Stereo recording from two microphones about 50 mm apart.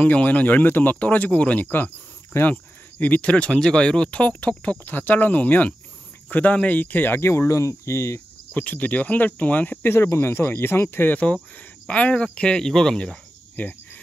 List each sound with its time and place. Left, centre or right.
0.0 s speech: left
3.4 s speech: centre; by 7.2 s left
7.2 s speech: left
8.5 s speech: left
9.8 s speech: left
11.9 s speech: left
13.6 s speech: left